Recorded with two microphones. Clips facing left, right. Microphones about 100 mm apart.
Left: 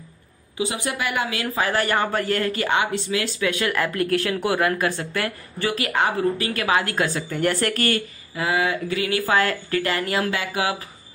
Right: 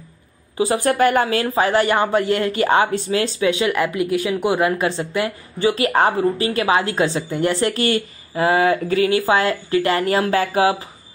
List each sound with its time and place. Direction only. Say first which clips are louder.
0.8 s a woman's voice: right 9 dB; 50° right (ahead or behind)
9.2 s a woman's voice: right 3 dB; 20° right (ahead or behind)